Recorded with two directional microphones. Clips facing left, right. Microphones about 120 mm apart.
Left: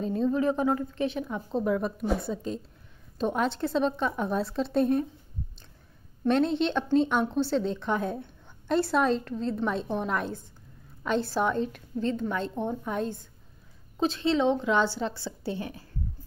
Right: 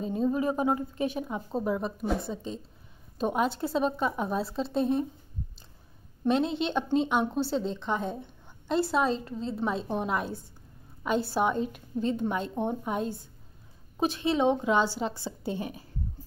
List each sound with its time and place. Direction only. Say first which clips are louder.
0.0 s a woman's voice: left 2 dB; 10° right (ahead or behind)
1.5 s a woman's voice: left 3 dB; 5° right (ahead or behind)
3.2 s a woman's voice: even; 10° right (ahead or behind)
6.2 s a woman's voice: left 2 dB; 5° right (ahead or behind); by 15.9 s 20° right (ahead or behind)